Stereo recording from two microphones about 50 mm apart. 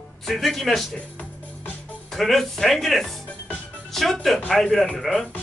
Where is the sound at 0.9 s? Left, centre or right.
Left.